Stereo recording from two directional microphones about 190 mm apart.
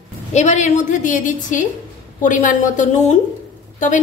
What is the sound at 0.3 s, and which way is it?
A woman's voice, 40° left (ahead or behind).